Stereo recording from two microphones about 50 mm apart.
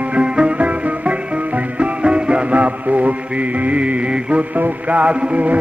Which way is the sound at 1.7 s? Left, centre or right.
Right.